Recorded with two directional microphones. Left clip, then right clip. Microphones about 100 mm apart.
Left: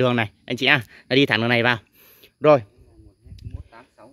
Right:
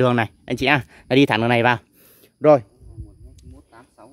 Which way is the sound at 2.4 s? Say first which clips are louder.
Right 1 dB; 30° left (ahead or behind).